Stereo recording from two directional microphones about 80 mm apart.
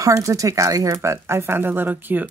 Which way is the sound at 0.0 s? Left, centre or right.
Right.